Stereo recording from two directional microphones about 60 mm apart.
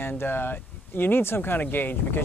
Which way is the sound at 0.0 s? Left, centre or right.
Left.